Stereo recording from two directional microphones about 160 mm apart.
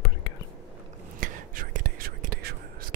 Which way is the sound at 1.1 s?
60° right (ahead or behind).